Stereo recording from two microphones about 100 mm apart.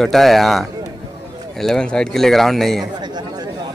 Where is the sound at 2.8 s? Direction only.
45° right (ahead or behind).